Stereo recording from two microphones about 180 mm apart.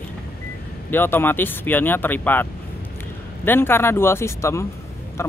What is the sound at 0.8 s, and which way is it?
Speech, 10° left (ahead or behind).